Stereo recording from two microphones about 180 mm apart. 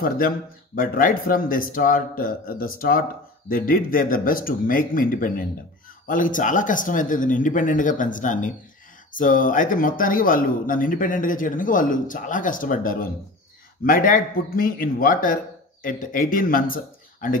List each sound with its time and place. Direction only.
0.7 s speech: 50° left (ahead or behind)